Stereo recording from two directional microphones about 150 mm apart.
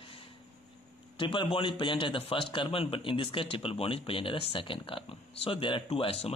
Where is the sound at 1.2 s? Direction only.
35° left (ahead or behind).